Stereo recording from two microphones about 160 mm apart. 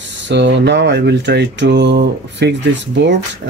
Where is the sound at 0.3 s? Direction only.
90° right.